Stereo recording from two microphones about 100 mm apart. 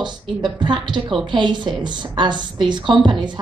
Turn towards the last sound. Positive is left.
turn(degrees=-50)  # may be behind; listen again after turning